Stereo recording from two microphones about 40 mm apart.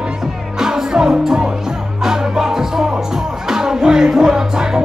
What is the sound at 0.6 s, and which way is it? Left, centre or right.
Music, centre.